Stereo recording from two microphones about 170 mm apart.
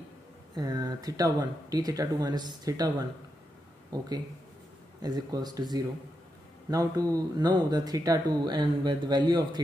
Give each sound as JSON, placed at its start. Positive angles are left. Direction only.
{"t": 0.6, "sound": "speech", "side_deg": -25}
{"t": 5.0, "sound": "speech", "side_deg": -25}